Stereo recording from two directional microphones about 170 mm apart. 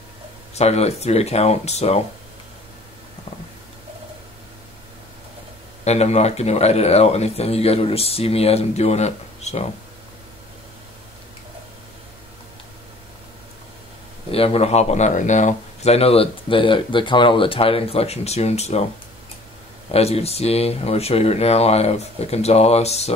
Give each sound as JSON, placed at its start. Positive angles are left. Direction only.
{"t": 0.6, "sound": "speech", "side_deg": 40}
{"t": 5.9, "sound": "speech", "side_deg": 40}
{"t": 14.3, "sound": "speech", "side_deg": 35}
{"t": 19.9, "sound": "speech", "side_deg": 35}